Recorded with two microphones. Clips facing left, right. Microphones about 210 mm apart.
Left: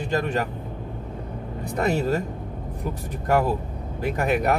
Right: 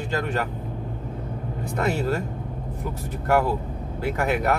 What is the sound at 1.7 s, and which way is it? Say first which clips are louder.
Speech: left 2 dB; 20° left (ahead or behind).